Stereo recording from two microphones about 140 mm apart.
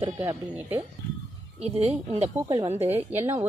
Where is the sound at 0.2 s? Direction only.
20° right (ahead or behind).